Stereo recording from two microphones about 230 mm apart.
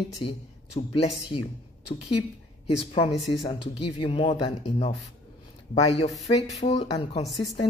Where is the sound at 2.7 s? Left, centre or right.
Left.